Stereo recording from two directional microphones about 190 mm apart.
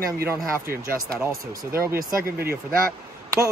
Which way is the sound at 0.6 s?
50° right (ahead or behind).